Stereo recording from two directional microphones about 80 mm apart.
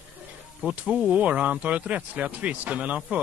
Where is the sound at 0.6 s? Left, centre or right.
Centre.